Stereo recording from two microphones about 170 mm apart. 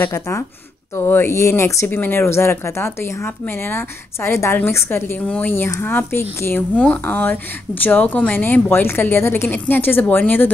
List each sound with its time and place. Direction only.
0.0 s speech: 15° left (ahead or behind)